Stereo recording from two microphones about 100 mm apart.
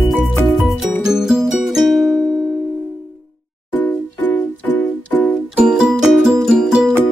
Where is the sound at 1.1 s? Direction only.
5° right (ahead or behind).